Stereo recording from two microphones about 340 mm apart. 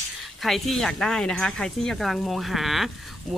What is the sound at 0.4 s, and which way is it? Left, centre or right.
Speech, centre.